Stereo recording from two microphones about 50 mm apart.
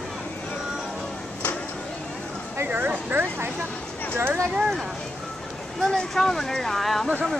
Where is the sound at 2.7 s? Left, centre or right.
Right.